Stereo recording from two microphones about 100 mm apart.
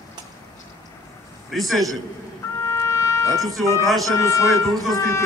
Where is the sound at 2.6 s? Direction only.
30° left (ahead or behind).